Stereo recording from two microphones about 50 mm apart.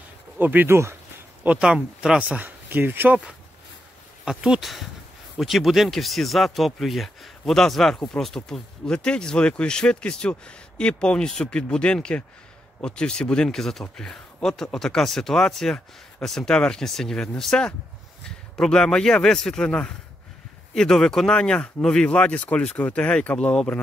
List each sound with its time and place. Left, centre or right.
0.4 s speech: right
0.7 s speech: right
1.6 s speech: centre
2.2 s speech: right
4.6 s speech: centre
8.5 s speech: centre
13.5 s speech: centre
20.7 s speech: centre
21.3 s speech: centre